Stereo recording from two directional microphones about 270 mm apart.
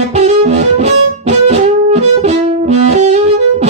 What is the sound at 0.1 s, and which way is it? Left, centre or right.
Music, right.